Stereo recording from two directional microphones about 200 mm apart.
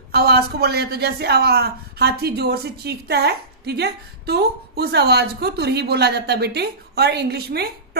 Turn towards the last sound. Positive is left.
turn(degrees=-55)  # may be behind; listen again after turning